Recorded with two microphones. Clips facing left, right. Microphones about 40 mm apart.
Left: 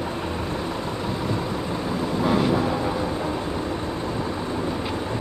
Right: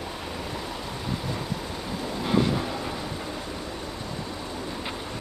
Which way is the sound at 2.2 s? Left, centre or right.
Centre.